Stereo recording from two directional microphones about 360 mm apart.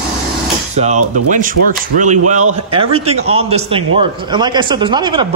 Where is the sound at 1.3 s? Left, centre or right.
Right.